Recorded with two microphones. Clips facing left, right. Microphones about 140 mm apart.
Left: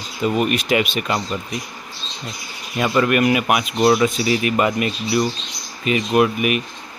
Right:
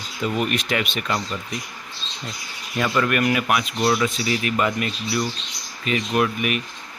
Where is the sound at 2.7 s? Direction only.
20° left (ahead or behind).